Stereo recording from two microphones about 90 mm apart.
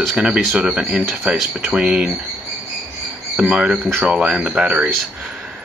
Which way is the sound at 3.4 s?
10° right (ahead or behind).